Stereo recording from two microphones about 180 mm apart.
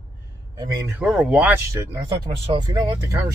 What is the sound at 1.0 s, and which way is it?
Speech, 5° right (ahead or behind).